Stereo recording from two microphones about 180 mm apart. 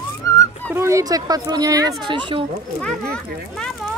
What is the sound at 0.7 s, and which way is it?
Speech, 15° right (ahead or behind).